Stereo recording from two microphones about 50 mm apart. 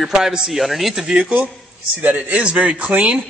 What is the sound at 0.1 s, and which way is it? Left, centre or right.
Speech, centre.